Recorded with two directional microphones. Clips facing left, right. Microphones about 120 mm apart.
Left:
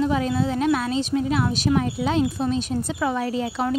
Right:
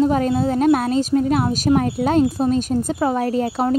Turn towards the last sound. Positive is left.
turn(degrees=-45)  # may be behind; listen again after turning